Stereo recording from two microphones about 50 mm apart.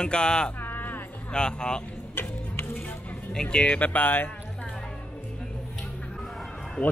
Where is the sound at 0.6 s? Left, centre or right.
Left.